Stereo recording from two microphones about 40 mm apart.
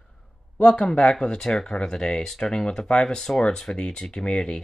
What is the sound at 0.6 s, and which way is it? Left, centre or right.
Speech, left.